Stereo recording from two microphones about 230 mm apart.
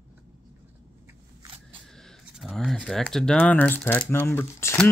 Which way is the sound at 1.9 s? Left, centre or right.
Centre.